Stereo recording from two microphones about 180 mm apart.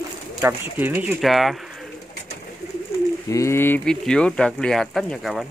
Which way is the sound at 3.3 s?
15° left (ahead or behind).